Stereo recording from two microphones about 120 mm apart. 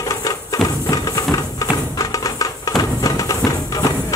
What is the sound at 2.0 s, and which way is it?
Music, 30° left (ahead or behind).